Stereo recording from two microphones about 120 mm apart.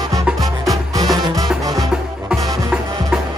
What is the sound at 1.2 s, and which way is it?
Music, 30° right (ahead or behind).